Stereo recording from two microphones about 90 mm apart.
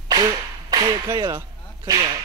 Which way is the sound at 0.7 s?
50° right (ahead or behind).